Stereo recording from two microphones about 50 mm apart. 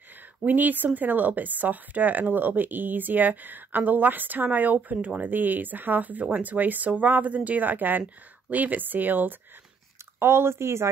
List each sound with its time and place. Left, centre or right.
0.5 s speech: right
10.1 s speech: right